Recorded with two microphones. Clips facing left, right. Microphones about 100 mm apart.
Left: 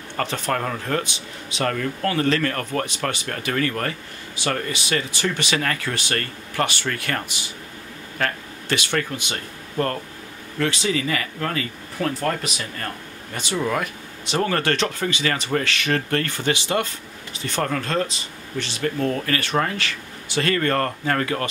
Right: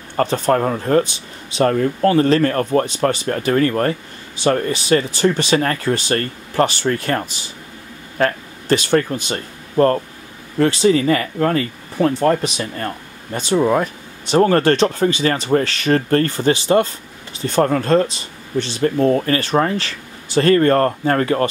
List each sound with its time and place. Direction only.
0.2 s speech: 35° right (ahead or behind)